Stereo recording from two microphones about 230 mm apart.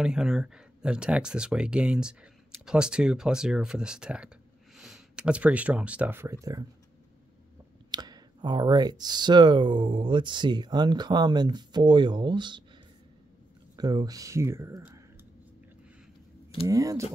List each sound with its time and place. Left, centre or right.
0.0 s speech: centre
7.9 s speech: centre
13.7 s speech: centre
16.6 s speech: centre